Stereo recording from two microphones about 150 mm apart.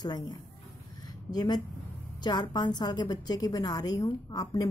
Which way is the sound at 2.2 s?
30° left (ahead or behind).